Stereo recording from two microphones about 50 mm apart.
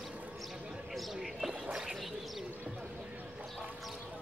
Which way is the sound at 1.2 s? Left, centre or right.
Centre.